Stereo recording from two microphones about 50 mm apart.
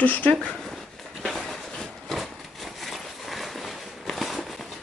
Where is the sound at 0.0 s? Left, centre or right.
Left.